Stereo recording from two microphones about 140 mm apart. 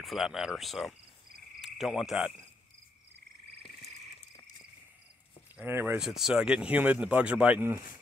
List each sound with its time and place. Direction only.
0.0 s speech: centre (ahead or behind)
1.6 s frog: centre (ahead or behind)
5.6 s speech: 15° right (ahead or behind)
5.9 s speech: 5° right (ahead or behind)